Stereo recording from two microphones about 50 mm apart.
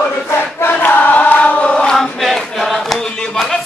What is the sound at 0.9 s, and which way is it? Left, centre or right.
Choir, left.